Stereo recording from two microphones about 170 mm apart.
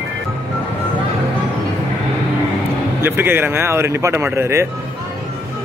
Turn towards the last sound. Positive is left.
turn(degrees=-15)  # may be behind; listen again after turning